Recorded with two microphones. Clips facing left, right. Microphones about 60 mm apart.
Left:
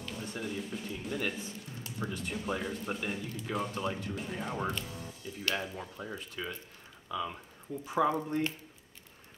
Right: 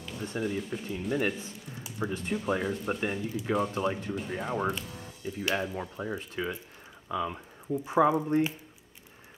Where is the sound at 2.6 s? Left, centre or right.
Centre; by 8.1 s right.